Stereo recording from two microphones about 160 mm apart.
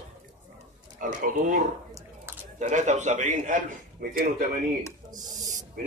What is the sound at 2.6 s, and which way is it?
A man's voice, 50° right (ahead or behind).